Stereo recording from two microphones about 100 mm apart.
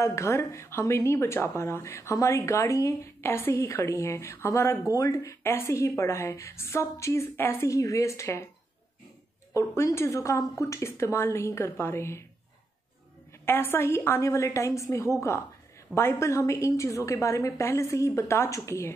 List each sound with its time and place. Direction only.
0.0 s speech: 30° left (ahead or behind)
9.5 s speech: 30° left (ahead or behind)
13.5 s speech: 25° left (ahead or behind)